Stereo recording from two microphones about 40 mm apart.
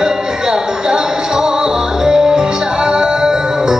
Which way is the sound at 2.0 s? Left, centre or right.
Centre.